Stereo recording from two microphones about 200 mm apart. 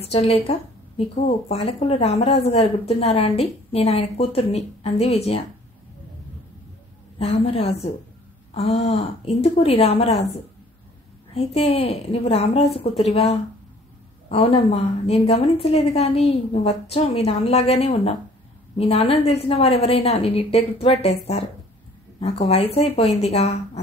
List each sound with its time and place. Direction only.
0.1 s speech: 30° left (ahead or behind)
7.2 s a woman's voice: 30° left (ahead or behind)
11.3 s a woman's voice: 30° left (ahead or behind)